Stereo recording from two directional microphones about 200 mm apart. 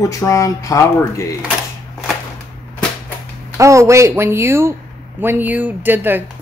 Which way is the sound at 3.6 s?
15° right (ahead or behind).